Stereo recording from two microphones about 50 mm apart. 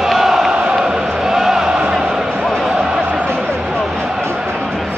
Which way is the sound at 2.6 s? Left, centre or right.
Centre.